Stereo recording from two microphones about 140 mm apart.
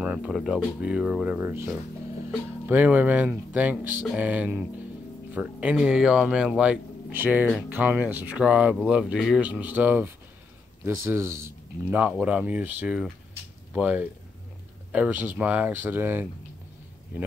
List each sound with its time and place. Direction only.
0.0 s speech: 5° right (ahead or behind)